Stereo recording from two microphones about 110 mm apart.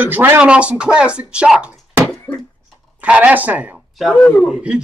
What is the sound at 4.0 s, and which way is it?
Speech, centre (ahead or behind).